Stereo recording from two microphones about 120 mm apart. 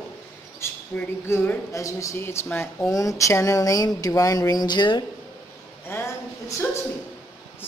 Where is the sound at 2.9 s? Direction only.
30° left (ahead or behind).